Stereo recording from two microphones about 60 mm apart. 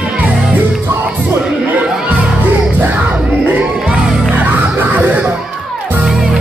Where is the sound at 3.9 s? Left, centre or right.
Right.